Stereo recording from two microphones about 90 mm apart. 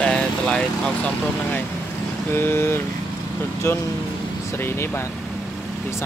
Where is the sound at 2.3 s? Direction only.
25° left (ahead or behind).